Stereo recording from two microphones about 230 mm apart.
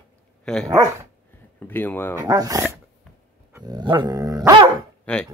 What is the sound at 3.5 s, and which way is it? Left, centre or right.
Dog, centre.